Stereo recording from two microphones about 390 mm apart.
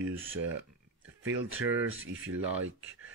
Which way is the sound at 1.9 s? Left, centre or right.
Right.